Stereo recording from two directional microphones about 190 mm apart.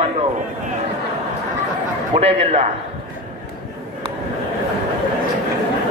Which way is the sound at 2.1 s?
35° right (ahead or behind).